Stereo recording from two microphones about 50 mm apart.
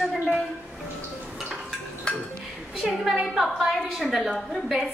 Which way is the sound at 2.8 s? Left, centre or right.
Centre.